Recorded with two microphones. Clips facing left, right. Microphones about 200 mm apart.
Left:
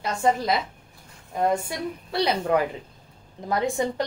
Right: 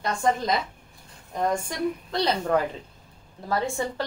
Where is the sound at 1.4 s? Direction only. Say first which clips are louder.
Left 1 dB; 10° left (ahead or behind).